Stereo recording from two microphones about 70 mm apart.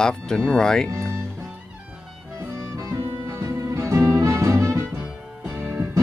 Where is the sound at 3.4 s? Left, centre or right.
Right.